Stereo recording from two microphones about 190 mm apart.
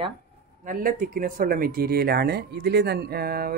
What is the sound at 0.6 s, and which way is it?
Speech, 45° right (ahead or behind).